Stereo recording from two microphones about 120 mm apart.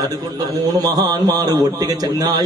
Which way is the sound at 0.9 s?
35° right (ahead or behind).